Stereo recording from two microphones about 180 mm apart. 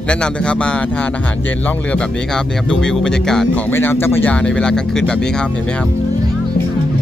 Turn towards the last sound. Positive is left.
turn(degrees=5)  # may be behind; listen again after turning